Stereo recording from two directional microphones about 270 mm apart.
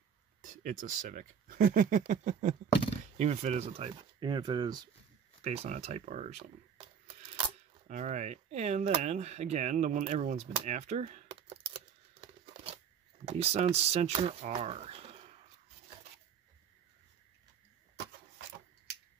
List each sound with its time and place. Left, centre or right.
0.4 s speech: right
7.9 s speech: right